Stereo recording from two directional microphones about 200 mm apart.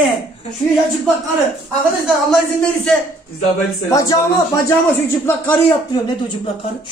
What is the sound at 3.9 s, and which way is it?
Speech, 15° left (ahead or behind).